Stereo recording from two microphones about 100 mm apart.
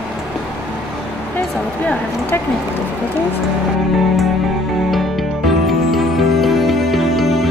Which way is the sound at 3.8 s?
Centre (ahead or behind).